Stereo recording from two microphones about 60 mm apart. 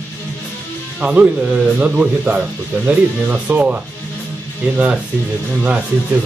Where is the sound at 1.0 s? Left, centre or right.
Right.